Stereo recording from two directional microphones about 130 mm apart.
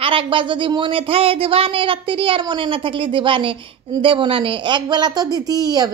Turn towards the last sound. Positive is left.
turn(degrees=-30)  # may be behind; listen again after turning